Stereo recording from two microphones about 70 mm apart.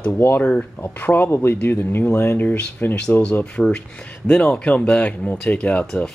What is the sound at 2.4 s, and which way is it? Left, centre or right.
Speech, left.